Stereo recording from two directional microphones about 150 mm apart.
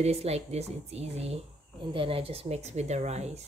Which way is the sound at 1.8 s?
35° right (ahead or behind).